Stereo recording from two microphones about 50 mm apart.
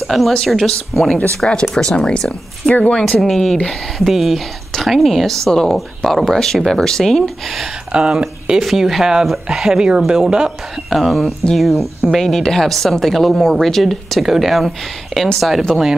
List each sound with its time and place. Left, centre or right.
0.0 s a woman's voice: centre
1.4 s speech: centre
2.7 s speech: left
3.1 s speech: centre
7.9 s speech: right
8.5 s speech: centre
10.9 s speech: centre